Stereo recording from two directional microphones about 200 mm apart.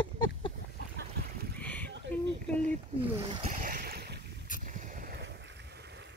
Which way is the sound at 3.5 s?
45° right (ahead or behind).